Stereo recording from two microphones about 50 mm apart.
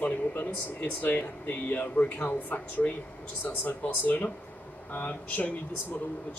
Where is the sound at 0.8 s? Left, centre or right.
Left.